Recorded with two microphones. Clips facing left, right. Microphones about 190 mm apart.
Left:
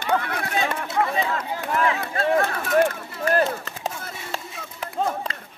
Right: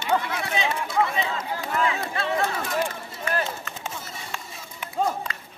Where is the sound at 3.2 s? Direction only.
40° left (ahead or behind).